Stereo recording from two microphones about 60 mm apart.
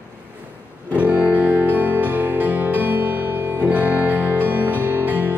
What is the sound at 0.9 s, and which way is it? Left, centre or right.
Music, right.